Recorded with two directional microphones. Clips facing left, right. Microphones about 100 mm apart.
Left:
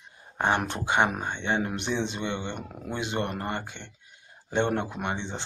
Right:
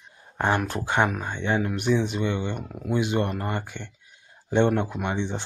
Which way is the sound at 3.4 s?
20° left (ahead or behind).